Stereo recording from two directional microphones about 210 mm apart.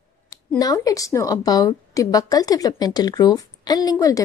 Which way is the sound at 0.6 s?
15° left (ahead or behind).